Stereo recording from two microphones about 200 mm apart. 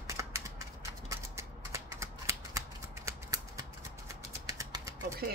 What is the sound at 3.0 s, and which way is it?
Scissors, 15° right (ahead or behind).